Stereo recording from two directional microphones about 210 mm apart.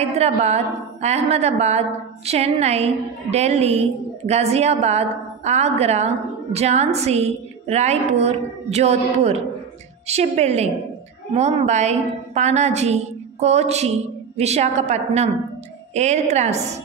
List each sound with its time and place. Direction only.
0.0 s a woman's voice: 30° right (ahead or behind)